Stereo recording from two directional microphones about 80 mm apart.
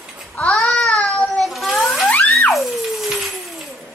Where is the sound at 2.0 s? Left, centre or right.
Centre.